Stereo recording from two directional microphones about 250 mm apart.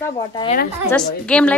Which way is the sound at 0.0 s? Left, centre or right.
Centre.